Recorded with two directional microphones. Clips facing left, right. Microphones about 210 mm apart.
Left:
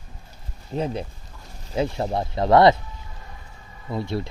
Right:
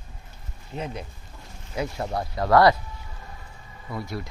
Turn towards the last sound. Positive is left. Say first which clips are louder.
# left 5 dB
turn(degrees=30)  # may be behind; listen again after turning